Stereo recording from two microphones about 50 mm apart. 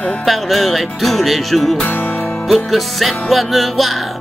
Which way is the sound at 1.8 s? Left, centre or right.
Left.